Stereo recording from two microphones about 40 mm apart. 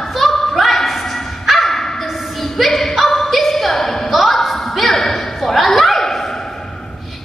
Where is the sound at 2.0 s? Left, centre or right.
Centre.